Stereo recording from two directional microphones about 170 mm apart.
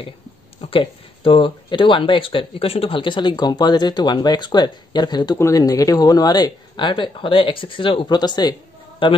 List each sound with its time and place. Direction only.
0.6 s a man's voice: 35° left (ahead or behind)